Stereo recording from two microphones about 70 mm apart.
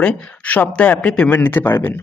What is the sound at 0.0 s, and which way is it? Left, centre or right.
Speech, centre.